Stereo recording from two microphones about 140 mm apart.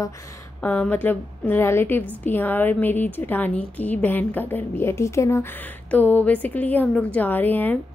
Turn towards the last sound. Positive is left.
turn(degrees=15)  # may be behind; listen again after turning